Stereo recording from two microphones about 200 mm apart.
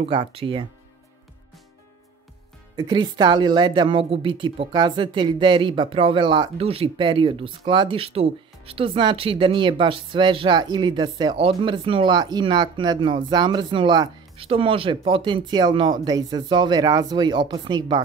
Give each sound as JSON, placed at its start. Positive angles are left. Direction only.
{"t": 0.0, "sound": "a woman's voice", "side_deg": -25}
{"t": 2.7, "sound": "a woman's voice", "side_deg": -20}